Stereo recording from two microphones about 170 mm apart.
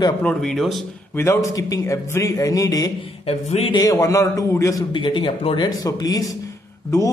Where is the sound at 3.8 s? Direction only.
20° left (ahead or behind).